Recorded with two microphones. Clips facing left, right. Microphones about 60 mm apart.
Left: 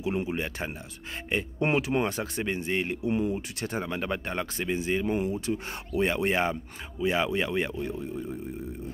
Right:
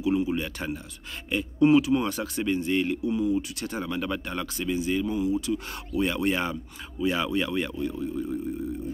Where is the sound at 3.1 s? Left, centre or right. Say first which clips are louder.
Even; left.